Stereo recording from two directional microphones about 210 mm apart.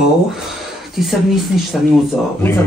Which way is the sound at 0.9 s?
Centre (ahead or behind).